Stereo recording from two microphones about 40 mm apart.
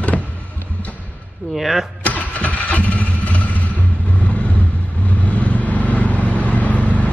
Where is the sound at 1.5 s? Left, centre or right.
Centre.